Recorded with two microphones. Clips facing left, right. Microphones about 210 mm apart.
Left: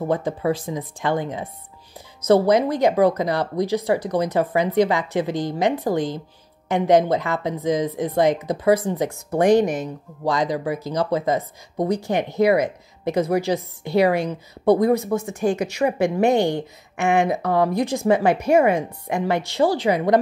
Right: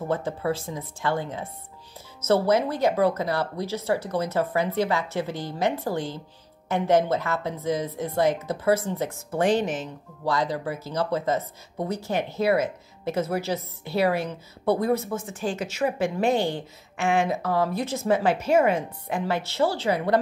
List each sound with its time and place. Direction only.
0.1 s speech: 15° left (ahead or behind)
15.1 s speech: 60° left (ahead or behind)
16.0 s speech: 15° left (ahead or behind)